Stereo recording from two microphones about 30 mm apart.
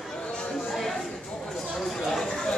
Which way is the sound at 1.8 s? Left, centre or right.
Centre.